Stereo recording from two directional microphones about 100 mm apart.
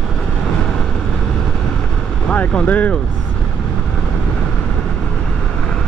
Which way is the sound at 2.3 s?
15° left (ahead or behind).